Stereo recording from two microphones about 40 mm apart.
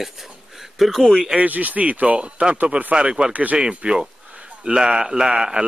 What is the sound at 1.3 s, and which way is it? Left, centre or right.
Speech, right.